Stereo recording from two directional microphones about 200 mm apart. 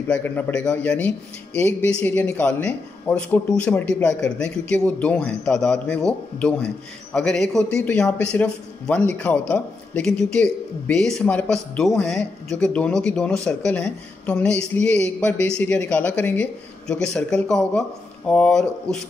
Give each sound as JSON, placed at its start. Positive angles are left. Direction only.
{"t": 0.1, "sound": "a man's voice", "side_deg": 10}